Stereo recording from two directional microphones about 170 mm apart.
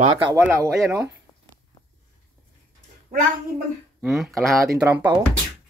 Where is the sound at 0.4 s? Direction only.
20° right (ahead or behind).